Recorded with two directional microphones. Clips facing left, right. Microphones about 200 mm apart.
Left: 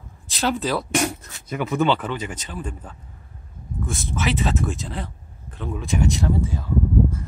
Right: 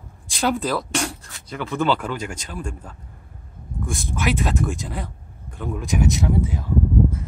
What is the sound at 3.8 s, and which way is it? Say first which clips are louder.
Speech: right 1 dB; 15° right (ahead or behind).